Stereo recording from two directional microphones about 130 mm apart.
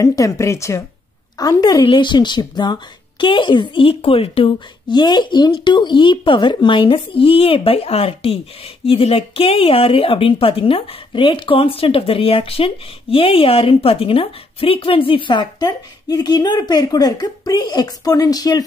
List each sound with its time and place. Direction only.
0.0 s speech: 25° left (ahead or behind)